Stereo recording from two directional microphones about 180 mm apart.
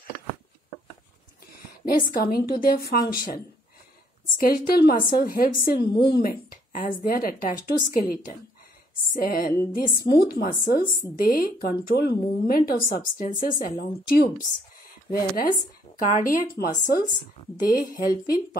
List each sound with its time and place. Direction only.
1.9 s a woman's voice: 50° left (ahead or behind)
4.4 s a woman's voice: 55° left (ahead or behind)